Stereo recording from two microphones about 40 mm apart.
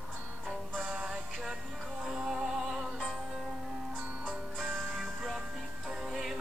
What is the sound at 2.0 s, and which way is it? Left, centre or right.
Music, centre.